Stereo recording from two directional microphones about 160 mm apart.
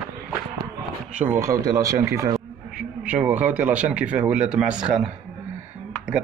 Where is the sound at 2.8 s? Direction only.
5° right (ahead or behind).